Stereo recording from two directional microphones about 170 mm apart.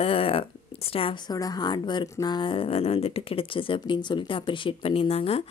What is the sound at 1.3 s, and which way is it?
Speech, 20° left (ahead or behind).